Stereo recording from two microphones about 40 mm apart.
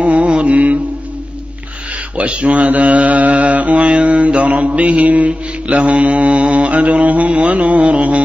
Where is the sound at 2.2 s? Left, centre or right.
Right.